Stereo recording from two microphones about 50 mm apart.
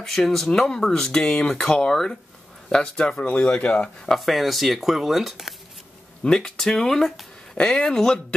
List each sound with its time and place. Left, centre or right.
0.0 s speech: centre
4.1 s speech: centre
6.2 s speech: centre